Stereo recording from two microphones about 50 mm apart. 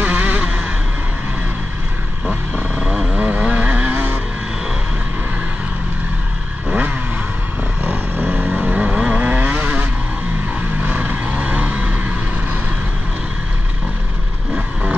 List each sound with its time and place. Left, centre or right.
0.0 s a sound: right
2.5 s vehicle: right
2.9 s vehicle: centre
3.2 s vehicle: right
8.6 s vehicle: right